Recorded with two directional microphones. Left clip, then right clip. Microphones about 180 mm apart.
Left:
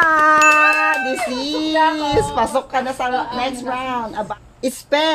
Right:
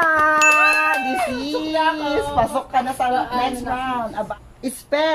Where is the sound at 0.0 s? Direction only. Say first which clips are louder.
Left 3 dB; 60° left (ahead or behind).